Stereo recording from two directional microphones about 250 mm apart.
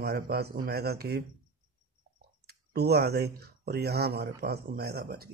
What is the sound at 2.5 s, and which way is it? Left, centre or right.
Speech, right.